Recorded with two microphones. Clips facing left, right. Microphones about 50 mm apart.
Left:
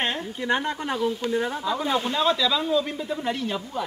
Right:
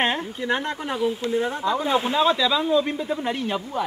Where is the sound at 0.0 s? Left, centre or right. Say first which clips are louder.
Right 4 dB; right.